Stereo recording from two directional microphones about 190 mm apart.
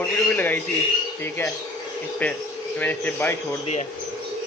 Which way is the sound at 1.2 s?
10° left (ahead or behind).